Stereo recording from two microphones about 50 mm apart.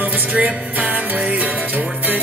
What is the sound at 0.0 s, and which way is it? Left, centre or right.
Music, right.